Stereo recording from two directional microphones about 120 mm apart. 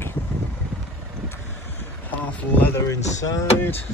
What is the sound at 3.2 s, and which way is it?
Speech, 30° left (ahead or behind).